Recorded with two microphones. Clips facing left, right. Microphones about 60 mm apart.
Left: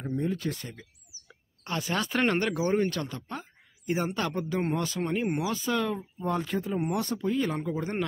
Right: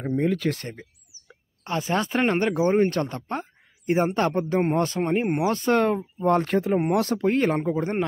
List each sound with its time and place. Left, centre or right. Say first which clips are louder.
0.0 s speech: right 7 dB; right
1.6 s speech: right 5 dB; right
5.4 s speech: right 8 dB; right
6.9 s speech: right 7 dB; right
7.5 s speech: right 6 dB; right